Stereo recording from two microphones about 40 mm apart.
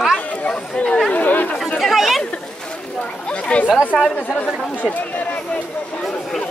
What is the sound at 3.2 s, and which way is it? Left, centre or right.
Speech, left.